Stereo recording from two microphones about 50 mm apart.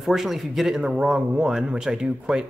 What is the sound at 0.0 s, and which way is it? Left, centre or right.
Speech, centre.